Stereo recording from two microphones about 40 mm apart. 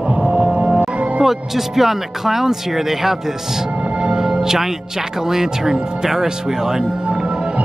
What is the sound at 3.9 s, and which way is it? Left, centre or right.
Music, right.